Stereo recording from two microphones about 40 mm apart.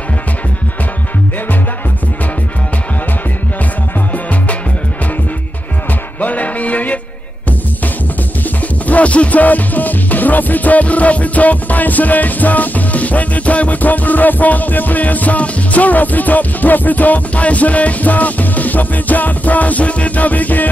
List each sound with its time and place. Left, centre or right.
6.2 s music: left
8.8 s music: left